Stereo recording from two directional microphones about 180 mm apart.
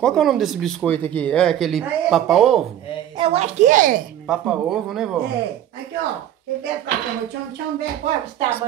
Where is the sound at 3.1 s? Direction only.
30° right (ahead or behind); by 4.0 s 50° right (ahead or behind).